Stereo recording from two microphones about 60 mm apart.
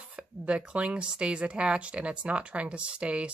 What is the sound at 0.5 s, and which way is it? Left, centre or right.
Speech, centre.